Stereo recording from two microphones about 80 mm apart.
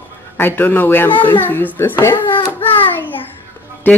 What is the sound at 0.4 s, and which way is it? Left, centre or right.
A child's voice, left.